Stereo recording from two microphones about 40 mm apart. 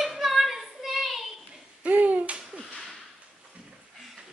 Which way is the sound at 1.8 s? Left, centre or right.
Right.